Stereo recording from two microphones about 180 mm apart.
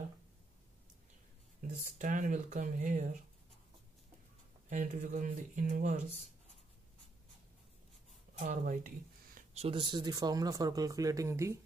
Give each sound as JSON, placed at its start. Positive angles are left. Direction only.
{"t": 1.6, "sound": "speech", "side_deg": -45}
{"t": 4.6, "sound": "speech", "side_deg": -45}
{"t": 8.5, "sound": "speech", "side_deg": -50}